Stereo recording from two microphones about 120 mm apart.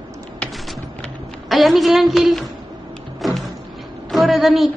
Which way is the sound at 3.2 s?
Centre (ahead or behind).